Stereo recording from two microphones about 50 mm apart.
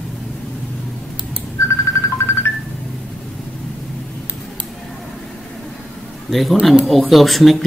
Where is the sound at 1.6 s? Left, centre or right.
Left.